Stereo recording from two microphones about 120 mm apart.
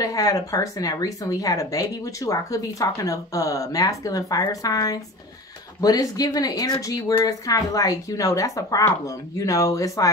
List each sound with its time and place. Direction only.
0.0 s speech: 30° left (ahead or behind)